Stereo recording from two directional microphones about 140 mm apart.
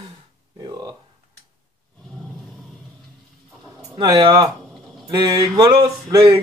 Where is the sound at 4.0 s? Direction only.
30° right (ahead or behind).